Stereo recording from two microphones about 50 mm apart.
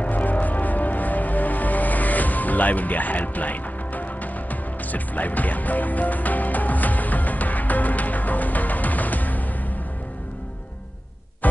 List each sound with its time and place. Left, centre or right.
0.0 s music: left